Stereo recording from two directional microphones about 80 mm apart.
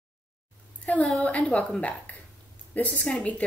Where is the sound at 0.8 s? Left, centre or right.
Centre.